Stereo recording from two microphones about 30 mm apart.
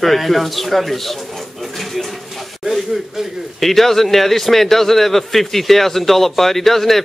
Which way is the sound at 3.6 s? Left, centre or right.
Centre.